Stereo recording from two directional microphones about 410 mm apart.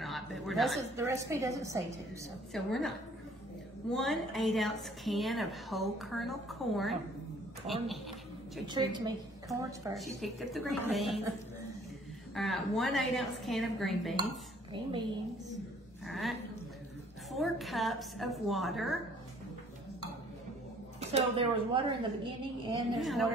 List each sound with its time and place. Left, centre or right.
0.0 s a woman's voice: centre
3.9 s a woman's voice: centre
8.6 s a woman's voice: centre
12.4 s a woman's voice: centre
14.7 s a woman's voice: centre
16.1 s a woman's voice: centre
21.7 s a woman's voice: centre
22.9 s a woman's voice: centre